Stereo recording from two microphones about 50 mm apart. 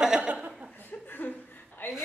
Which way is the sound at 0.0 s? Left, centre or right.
Centre.